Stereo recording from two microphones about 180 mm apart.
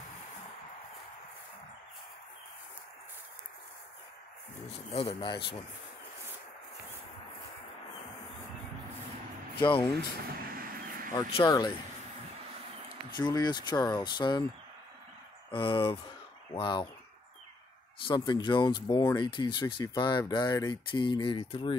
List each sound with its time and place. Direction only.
4.6 s a man's voice: 35° left (ahead or behind)
9.6 s speech: 30° left (ahead or behind)
10.4 s vehicle: 55° right (ahead or behind)
11.3 s speech: 25° left (ahead or behind)
13.1 s speech: 25° left (ahead or behind)
15.5 s speech: 30° left (ahead or behind)
18.0 s speech: 25° left (ahead or behind)